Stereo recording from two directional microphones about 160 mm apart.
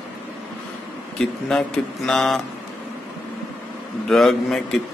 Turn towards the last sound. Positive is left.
turn(degrees=0)  # may be behind; listen again after turning